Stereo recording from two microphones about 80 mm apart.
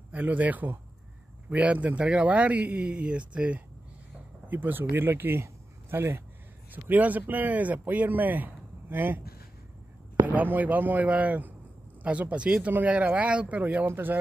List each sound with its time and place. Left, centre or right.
0.1 s a man's voice: centre
10.2 s a man's voice: right